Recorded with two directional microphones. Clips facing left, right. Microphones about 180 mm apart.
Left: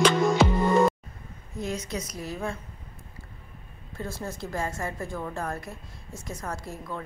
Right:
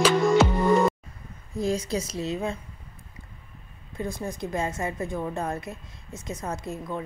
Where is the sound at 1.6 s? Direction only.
30° right (ahead or behind).